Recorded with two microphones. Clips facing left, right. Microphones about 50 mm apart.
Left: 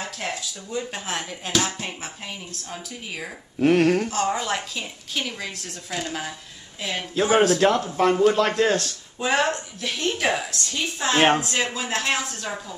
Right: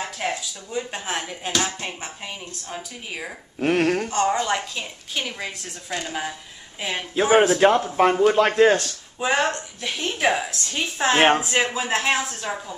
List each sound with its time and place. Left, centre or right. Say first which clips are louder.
0.0 s a woman's voice: right 3 dB; centre
9.2 s a woman's voice: even; centre; by 11.2 s right
11.2 s a woman's voice: right 2 dB; centre